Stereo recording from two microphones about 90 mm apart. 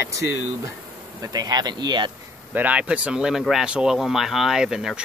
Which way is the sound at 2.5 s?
15° right (ahead or behind).